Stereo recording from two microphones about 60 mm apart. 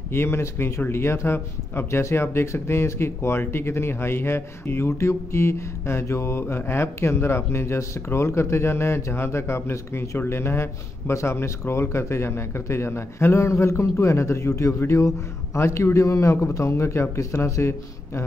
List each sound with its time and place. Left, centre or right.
0.1 s a man's voice: left